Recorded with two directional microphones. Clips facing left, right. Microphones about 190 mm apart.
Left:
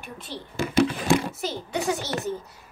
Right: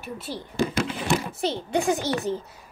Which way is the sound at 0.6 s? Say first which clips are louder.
Right 4 dB; 35° right (ahead or behind).